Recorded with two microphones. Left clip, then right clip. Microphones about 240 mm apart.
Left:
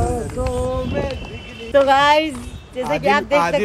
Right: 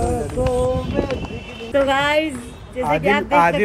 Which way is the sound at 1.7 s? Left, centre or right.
Left.